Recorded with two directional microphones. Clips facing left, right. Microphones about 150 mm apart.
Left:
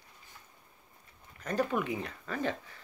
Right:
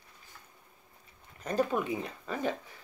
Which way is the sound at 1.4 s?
25° right (ahead or behind).